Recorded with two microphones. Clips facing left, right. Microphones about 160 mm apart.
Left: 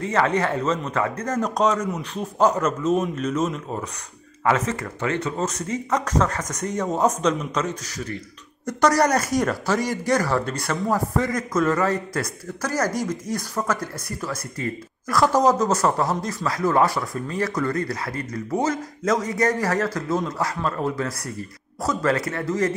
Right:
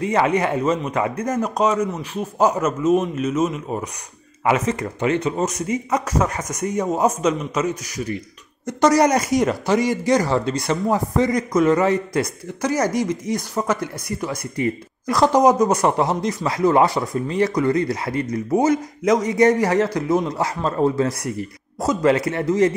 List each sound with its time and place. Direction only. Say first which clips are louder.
0.0 s speech: right 3 dB; 15° right (ahead or behind)
1.4 s speech: right 1 dB; 5° right (ahead or behind); by 22.7 s 20° right (ahead or behind)